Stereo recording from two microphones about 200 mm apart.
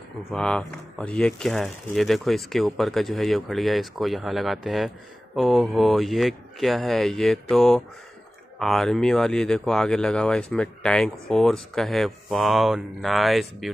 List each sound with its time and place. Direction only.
0.3 s speech: 5° left (ahead or behind)